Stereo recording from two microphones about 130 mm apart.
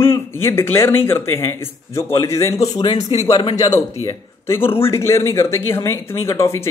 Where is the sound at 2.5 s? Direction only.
55° left (ahead or behind).